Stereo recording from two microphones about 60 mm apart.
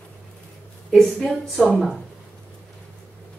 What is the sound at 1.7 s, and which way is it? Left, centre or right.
Speech, centre.